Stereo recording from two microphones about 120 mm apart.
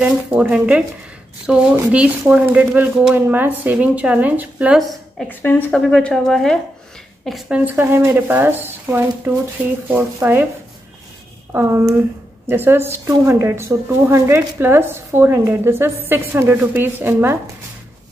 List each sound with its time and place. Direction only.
0.0 s speech: 10° right (ahead or behind)
5.3 s speech: 15° left (ahead or behind); by 10.5 s 20° right (ahead or behind)
12.4 s speech: 20° right (ahead or behind)